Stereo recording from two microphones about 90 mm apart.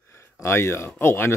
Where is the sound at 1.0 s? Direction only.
25° left (ahead or behind).